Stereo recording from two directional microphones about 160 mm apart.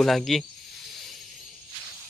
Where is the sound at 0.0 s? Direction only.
Centre (ahead or behind).